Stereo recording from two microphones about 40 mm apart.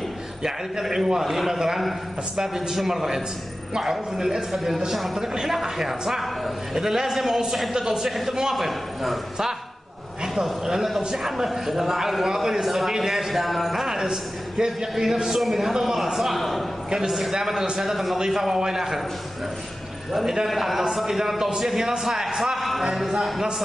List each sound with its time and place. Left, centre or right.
0.4 s a man's voice: centre
20.1 s a man's voice: centre